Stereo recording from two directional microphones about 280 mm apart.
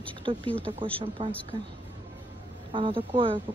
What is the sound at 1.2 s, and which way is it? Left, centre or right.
Speech, centre.